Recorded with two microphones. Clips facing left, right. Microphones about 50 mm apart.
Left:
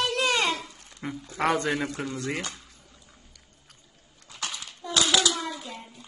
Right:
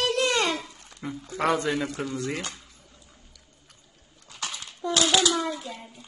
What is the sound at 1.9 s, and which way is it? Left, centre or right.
Speech, centre.